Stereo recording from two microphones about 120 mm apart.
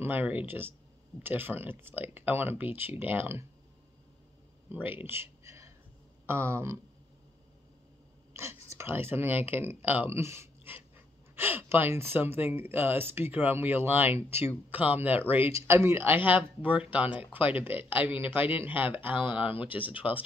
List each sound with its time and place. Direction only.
0.0 s speech: 15° right (ahead or behind)
4.6 s a sound: 15° right (ahead or behind)
6.2 s speech: 20° right (ahead or behind)
8.3 s speech: 20° right (ahead or behind)